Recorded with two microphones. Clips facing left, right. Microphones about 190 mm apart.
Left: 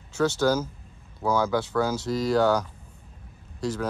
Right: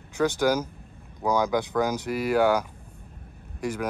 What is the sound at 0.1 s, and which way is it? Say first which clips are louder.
Speech: even; 15° right (ahead or behind).